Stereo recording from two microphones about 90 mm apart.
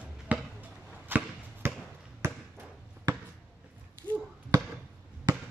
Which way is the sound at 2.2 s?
30° right (ahead or behind).